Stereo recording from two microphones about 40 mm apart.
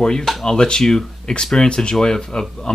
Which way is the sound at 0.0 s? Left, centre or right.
Centre.